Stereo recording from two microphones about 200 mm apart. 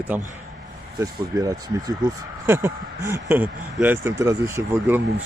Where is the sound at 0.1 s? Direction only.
10° right (ahead or behind).